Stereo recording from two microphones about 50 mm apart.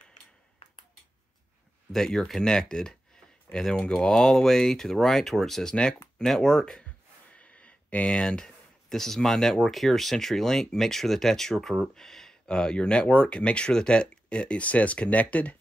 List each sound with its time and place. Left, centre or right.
1.9 s speech: centre
7.3 s speech: left